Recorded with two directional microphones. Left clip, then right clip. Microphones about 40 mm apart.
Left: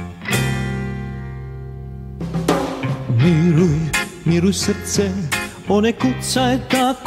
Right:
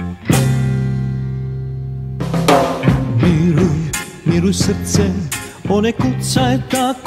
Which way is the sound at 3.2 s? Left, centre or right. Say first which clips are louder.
Left 2 dB; left.